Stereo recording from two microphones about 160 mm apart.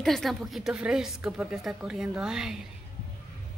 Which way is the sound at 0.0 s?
Centre (ahead or behind).